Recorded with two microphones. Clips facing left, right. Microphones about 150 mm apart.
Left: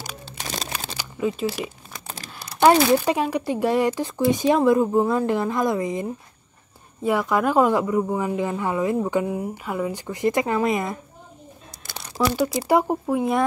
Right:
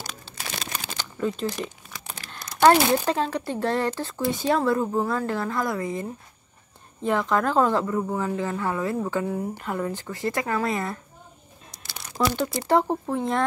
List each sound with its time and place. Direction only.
0.9 s speech: 10° left (ahead or behind)
1.9 s crumpling: 40° left (ahead or behind)
2.3 s speech: 10° left (ahead or behind)
12.2 s speech: 5° left (ahead or behind)